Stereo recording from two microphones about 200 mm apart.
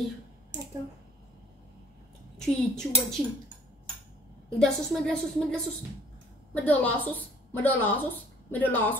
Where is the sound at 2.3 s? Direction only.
Centre (ahead or behind).